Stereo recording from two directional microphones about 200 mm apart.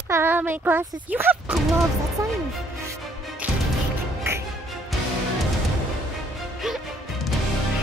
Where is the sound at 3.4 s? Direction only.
10° right (ahead or behind).